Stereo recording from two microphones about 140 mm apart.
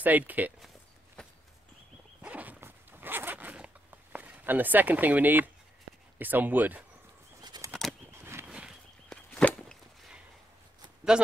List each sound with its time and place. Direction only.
0.0 s speech: 10° right (ahead or behind)
1.2 s walk: 5° left (ahead or behind)
2.2 s zipper: 10° right (ahead or behind)
6.1 s speech: 15° right (ahead or behind)
7.4 s bird flight: 30° right (ahead or behind)
8.1 s a sound: 15° right (ahead or behind)
9.1 s chop: 10° left (ahead or behind)
11.1 s speech: 5° right (ahead or behind)